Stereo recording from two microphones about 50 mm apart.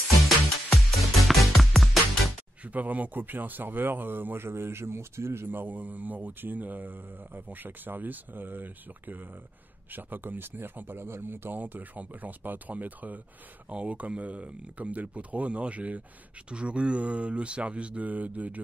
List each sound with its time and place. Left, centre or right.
0.7 s music: centre
2.6 s speech: right
11.6 s speech: right